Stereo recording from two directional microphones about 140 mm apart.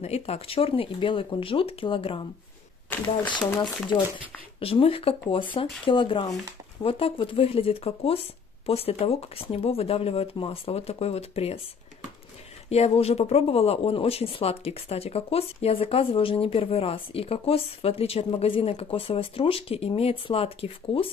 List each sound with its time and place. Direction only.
0.0 s speech: 50° left (ahead or behind)
4.6 s speech: 40° left (ahead or behind)
12.6 s speech: 50° left (ahead or behind)